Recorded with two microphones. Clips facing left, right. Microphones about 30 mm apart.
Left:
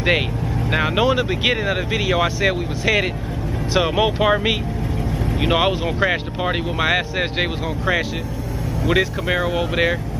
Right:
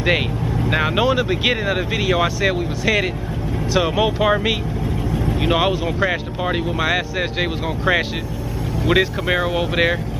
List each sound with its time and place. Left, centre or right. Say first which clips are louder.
0.7 s speech: even; centre
7.6 s speech: right 2 dB; centre